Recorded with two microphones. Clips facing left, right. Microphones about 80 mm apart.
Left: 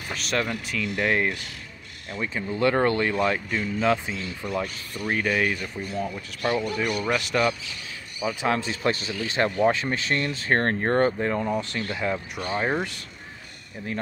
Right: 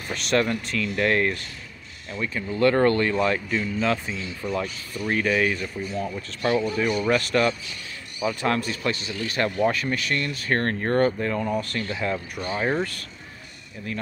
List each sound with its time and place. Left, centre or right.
0.1 s speech: centre
8.2 s speech: centre
8.5 s speech: left